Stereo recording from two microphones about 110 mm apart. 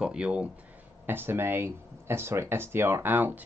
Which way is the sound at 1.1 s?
20° right (ahead or behind).